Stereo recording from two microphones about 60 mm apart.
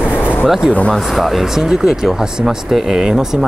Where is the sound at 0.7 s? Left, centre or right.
Left.